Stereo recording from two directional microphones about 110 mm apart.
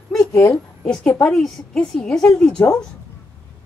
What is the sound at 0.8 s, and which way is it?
A woman's voice, 10° left (ahead or behind).